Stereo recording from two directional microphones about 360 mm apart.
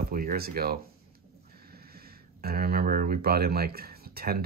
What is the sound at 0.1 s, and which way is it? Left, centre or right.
Speech, right.